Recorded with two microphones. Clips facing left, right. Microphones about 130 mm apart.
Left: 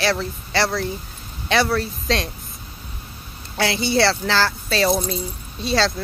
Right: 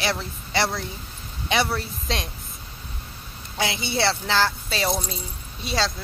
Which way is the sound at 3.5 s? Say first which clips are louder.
Left 6 dB; 15° right (ahead or behind).